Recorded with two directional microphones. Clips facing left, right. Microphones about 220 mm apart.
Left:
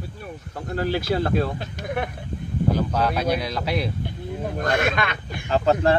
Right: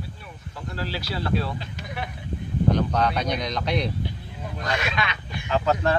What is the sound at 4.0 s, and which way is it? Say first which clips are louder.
Speech: left 5 dB; 50° left (ahead or behind).